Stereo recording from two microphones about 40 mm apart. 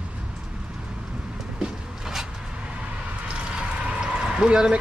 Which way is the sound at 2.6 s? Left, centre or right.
Right.